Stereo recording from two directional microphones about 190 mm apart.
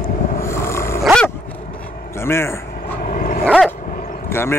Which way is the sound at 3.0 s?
45° left (ahead or behind).